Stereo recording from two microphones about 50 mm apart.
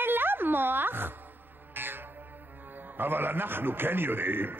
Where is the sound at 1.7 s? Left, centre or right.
Right.